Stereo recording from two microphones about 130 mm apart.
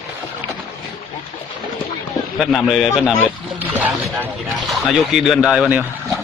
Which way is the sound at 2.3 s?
Centre (ahead or behind).